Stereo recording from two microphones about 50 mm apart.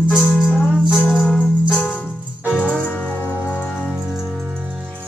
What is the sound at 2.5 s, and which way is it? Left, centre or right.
Music, left.